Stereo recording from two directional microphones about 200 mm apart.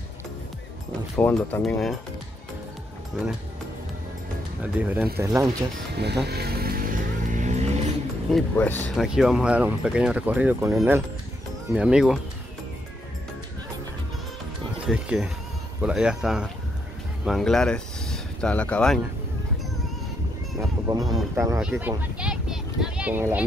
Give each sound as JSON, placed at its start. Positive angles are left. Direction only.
{"t": 1.1, "sound": "speech", "side_deg": 10}
{"t": 4.7, "sound": "speech", "side_deg": -10}
{"t": 5.9, "sound": "vehicle", "side_deg": -55}
{"t": 8.3, "sound": "speech", "side_deg": 5}
{"t": 14.9, "sound": "speech", "side_deg": -5}
{"t": 20.9, "sound": "speech", "side_deg": -20}
{"t": 21.5, "sound": "a sound", "side_deg": -5}